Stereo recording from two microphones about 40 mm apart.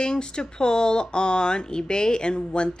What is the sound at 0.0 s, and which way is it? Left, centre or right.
A woman's voice, left.